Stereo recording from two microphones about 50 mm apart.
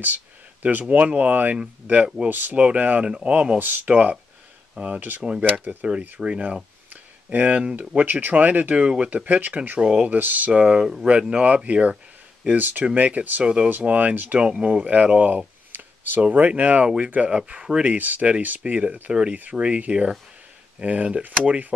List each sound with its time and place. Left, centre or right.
0.0 s speech: right
2.5 s speech: right
3.1 s speech: centre
3.5 s speech: right
5.9 s speech: right
10.1 s speech: right
10.6 s speech: centre
12.4 s speech: right
13.4 s speech: centre
13.7 s speech: right
14.4 s speech: right
16.8 s speech: centre
17.9 s speech: right